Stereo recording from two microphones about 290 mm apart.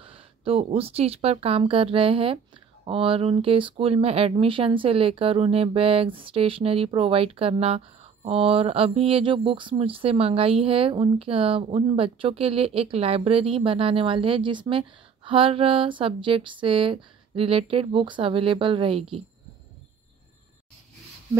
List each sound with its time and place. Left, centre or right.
0.0 s speech: centre